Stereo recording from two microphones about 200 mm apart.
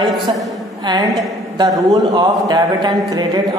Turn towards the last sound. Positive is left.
turn(degrees=-20)  # may be behind; listen again after turning